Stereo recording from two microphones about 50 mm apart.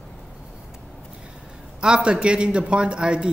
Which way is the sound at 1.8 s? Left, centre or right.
Centre.